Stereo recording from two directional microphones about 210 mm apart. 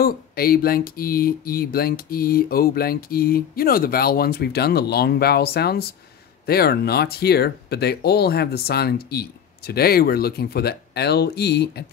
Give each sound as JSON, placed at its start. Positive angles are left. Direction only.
{"t": 0.0, "sound": "speech", "side_deg": 45}